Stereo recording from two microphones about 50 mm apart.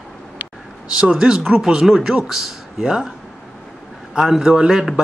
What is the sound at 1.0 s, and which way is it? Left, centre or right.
Speech, centre.